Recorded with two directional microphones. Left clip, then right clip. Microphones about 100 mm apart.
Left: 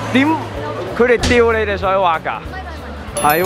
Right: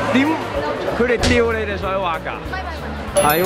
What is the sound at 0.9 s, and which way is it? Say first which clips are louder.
Speech: left 5 dB; 30° left (ahead or behind).